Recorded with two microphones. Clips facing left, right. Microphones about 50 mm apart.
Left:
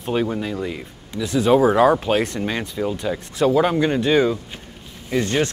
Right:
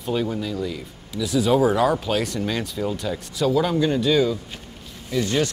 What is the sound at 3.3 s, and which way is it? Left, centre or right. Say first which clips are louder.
Speech: left 3 dB; left.